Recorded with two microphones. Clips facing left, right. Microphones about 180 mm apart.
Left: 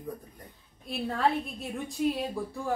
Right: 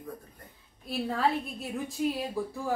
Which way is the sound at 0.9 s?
Centre (ahead or behind).